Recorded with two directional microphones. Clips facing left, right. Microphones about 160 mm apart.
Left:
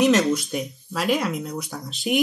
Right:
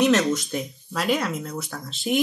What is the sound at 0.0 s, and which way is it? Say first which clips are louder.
Speech: left 1 dB; 10° left (ahead or behind).